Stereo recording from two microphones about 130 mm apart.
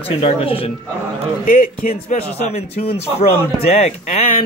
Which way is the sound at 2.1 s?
75° left (ahead or behind).